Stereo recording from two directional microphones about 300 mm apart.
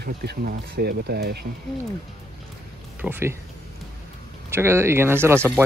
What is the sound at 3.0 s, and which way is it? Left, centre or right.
Speech, centre.